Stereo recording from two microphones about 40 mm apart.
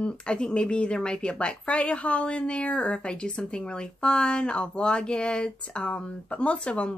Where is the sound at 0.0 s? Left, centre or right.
Left.